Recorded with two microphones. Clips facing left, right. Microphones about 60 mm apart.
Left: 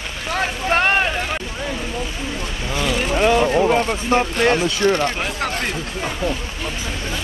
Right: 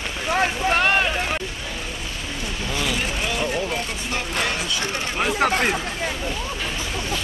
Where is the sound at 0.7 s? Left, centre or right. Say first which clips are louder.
Left 3 dB; left.